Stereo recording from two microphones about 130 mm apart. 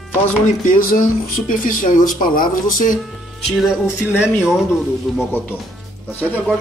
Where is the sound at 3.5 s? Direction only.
Centre (ahead or behind).